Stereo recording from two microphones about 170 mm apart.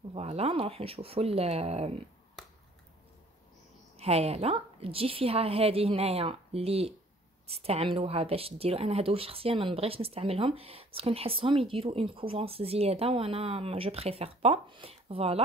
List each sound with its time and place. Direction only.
0.1 s speech: 35° right (ahead or behind)
4.0 s speech: 35° right (ahead or behind)